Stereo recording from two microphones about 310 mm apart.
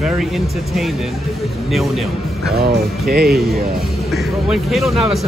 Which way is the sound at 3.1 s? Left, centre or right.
Right.